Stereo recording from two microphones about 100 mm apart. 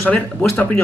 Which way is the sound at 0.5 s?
15° left (ahead or behind).